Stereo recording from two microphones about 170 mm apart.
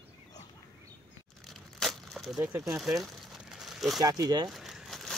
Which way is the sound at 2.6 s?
Centre (ahead or behind).